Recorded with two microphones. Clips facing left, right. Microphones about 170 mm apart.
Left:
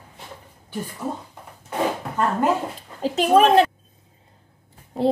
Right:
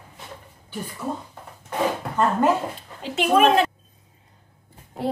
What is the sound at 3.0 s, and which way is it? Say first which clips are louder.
Speech: left 2 dB; 35° left (ahead or behind).